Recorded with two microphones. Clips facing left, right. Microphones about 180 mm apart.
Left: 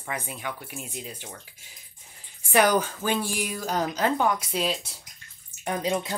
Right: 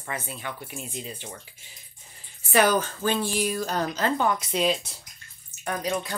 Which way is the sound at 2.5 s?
15° left (ahead or behind).